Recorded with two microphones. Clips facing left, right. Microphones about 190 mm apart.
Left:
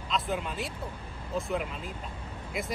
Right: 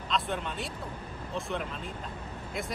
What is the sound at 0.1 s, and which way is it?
Speech, 5° left (ahead or behind).